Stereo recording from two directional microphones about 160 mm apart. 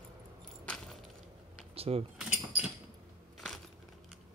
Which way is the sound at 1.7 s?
40° right (ahead or behind).